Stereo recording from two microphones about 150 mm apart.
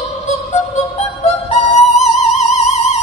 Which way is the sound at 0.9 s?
50° left (ahead or behind).